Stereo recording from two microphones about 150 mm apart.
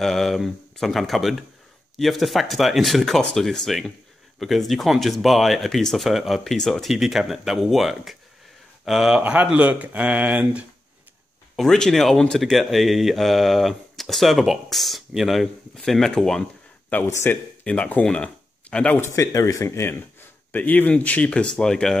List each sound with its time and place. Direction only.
0.0 s speech: centre (ahead or behind)
11.5 s speech: 5° left (ahead or behind)
16.9 s speech: 15° left (ahead or behind)
19.1 s speech: 20° left (ahead or behind); by 21.9 s 5° left (ahead or behind)